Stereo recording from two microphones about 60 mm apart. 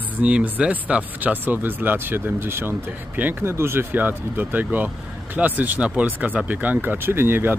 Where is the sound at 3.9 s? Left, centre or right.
Right.